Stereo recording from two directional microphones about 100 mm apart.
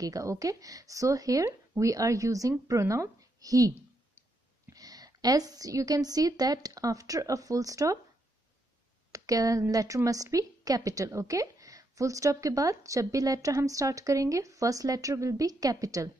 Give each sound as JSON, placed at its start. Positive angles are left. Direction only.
{"t": 0.0, "sound": "a woman's voice", "side_deg": -35}
{"t": 9.1, "sound": "a woman's voice", "side_deg": -35}